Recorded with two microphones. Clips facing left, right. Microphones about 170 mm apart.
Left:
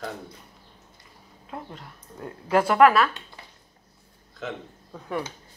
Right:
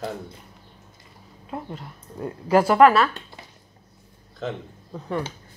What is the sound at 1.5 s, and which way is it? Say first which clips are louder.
Speech: right 4 dB; 10° right (ahead or behind).